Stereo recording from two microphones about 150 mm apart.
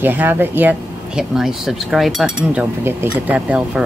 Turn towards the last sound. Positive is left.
turn(degrees=-5)  # may be behind; listen again after turning